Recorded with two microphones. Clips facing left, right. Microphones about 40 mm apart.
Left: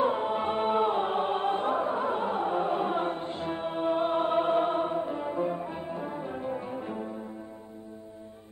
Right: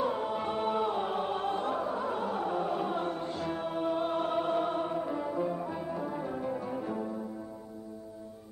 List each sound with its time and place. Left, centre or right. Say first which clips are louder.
0.0 s choir: left 4 dB; left
6.2 s music: left 1 dB; left